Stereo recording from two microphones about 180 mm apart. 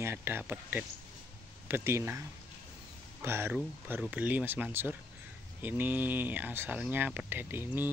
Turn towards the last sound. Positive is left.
turn(degrees=-10)  # may be behind; listen again after turning